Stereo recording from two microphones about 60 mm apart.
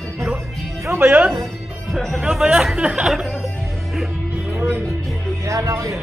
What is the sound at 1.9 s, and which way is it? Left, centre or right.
Speech, centre.